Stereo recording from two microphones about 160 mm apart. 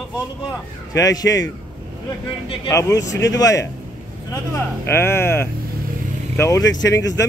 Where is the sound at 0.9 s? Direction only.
20° left (ahead or behind).